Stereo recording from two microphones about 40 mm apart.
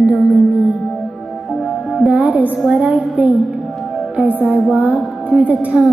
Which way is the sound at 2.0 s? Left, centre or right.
Right.